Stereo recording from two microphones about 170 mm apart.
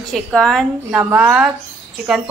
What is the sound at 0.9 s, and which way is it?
Speech, 10° right (ahead or behind).